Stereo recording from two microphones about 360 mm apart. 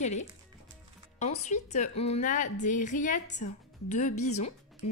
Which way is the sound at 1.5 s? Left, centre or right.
Centre.